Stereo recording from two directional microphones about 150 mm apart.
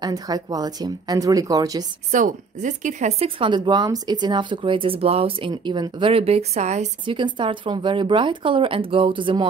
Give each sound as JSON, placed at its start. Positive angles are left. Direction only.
{"t": 0.0, "sound": "speech", "side_deg": -25}
{"t": 2.0, "sound": "speech", "side_deg": -55}
{"t": 7.1, "sound": "speech", "side_deg": -30}